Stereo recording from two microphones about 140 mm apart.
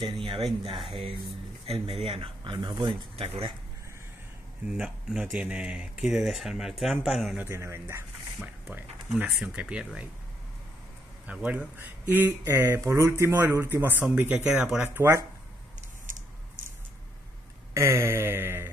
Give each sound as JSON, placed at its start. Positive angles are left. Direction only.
{"t": 0.0, "sound": "speech", "side_deg": -35}
{"t": 4.7, "sound": "speech", "side_deg": -5}
{"t": 7.3, "sound": "speech", "side_deg": -20}
{"t": 9.1, "sound": "speech", "side_deg": -5}
{"t": 11.2, "sound": "speech", "side_deg": -10}
{"t": 14.8, "sound": "speech", "side_deg": -20}
{"t": 17.7, "sound": "speech", "side_deg": -20}